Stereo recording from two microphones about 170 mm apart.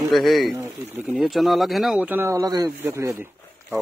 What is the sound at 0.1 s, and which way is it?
Speech, centre (ahead or behind).